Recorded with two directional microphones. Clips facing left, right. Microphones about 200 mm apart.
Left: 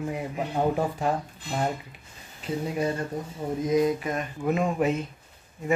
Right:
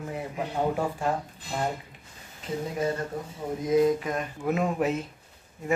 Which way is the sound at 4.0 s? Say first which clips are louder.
Left 1 dB; centre (ahead or behind).